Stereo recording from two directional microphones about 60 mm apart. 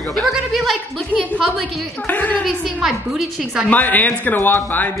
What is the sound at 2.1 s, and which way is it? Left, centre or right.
Speech, left.